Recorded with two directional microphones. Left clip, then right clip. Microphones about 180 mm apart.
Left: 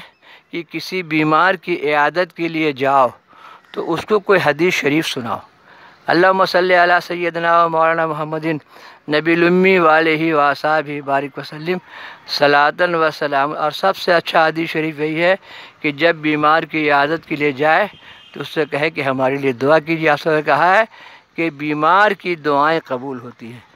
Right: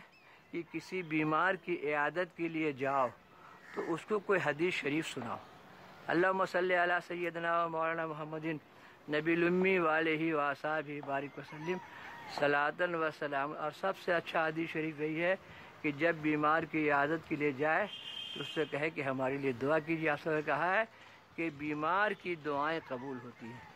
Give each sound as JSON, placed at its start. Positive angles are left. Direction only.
{"t": 0.5, "sound": "speech", "side_deg": 35}